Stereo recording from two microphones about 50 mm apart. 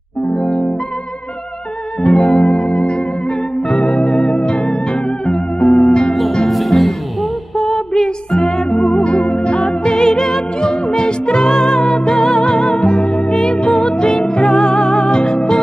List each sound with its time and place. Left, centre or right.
0.3 s music: centre
2.0 s music: centre
6.3 s music: centre